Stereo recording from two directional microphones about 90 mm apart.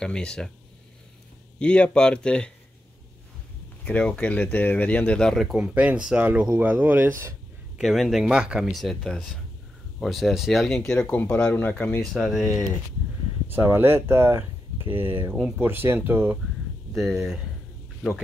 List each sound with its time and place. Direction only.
0.0 s speech: 10° left (ahead or behind)
1.6 s speech: 10° left (ahead or behind)
3.8 s speech: 10° left (ahead or behind); by 7.3 s 25° right (ahead or behind)
7.7 s speech: 5° right (ahead or behind)
11.5 s speech: 20° left (ahead or behind)
12.1 s speech: 5° left (ahead or behind)
13.5 s speech: 25° right (ahead or behind)
16.9 s speech: centre (ahead or behind)